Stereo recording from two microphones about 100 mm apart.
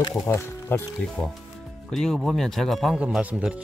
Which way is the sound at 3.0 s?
10° right (ahead or behind).